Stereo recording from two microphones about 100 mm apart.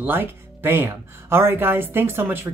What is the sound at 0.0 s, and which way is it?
Speech, 20° right (ahead or behind).